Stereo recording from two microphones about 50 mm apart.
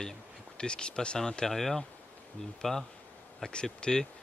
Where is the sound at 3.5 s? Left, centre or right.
Centre.